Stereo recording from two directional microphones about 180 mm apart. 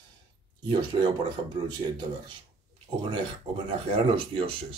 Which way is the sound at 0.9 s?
30° right (ahead or behind).